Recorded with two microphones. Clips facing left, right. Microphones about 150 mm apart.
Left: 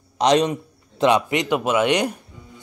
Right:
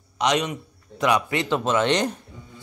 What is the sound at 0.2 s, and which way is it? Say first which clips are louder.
A man's voice: left 6 dB; 35° left (ahead or behind).